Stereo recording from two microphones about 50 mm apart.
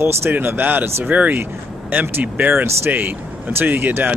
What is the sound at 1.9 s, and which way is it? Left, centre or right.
Speech, right.